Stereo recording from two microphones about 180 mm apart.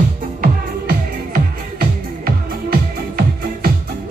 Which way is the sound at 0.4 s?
55° right (ahead or behind).